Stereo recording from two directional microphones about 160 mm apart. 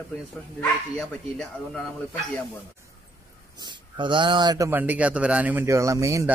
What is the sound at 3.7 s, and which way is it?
Speech, 30° right (ahead or behind).